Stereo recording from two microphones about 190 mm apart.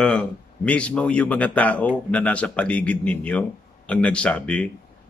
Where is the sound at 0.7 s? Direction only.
5° left (ahead or behind).